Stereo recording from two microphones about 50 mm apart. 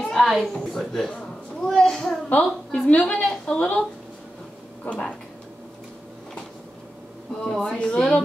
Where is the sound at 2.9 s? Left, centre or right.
Left.